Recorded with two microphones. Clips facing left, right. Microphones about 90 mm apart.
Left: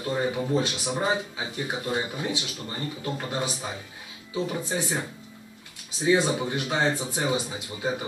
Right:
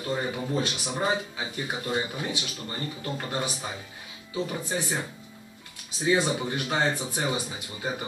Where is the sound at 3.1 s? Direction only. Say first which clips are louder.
Right 1 dB; 10° left (ahead or behind).